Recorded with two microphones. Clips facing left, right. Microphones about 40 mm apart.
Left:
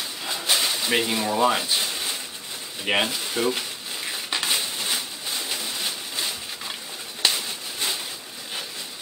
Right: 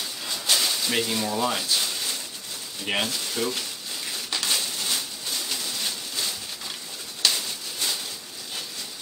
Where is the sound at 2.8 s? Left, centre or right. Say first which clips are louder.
Left 4 dB; left.